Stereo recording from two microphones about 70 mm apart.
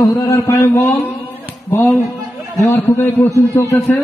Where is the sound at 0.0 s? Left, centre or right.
Left.